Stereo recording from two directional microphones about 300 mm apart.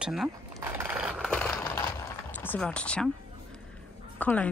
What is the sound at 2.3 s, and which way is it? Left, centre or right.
Speech, centre.